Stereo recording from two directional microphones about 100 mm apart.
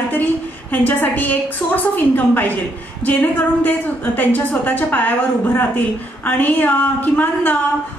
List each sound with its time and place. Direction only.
0.1 s a woman's voice: 20° left (ahead or behind)